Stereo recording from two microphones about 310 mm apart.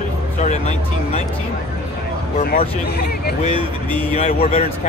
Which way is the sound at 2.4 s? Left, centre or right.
Left.